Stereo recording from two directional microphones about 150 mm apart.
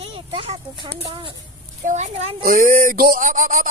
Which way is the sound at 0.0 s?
35° right (ahead or behind).